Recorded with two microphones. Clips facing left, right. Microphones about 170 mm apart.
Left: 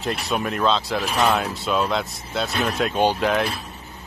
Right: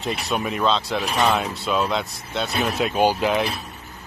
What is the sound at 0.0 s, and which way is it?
Speech, centre (ahead or behind).